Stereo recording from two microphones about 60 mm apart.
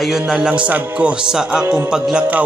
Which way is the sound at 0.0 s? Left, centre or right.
Centre.